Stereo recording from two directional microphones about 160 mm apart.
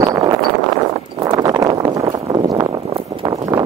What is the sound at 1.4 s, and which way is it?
Clip-clop, 20° right (ahead or behind).